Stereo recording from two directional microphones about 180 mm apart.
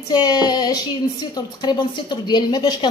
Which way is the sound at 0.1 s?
25° left (ahead or behind).